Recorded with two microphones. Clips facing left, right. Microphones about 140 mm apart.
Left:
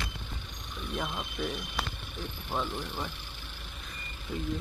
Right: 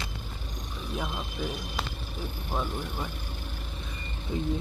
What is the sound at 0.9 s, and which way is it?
Speech, centre (ahead or behind).